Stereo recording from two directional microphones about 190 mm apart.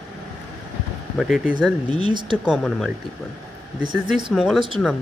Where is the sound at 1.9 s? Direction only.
25° right (ahead or behind).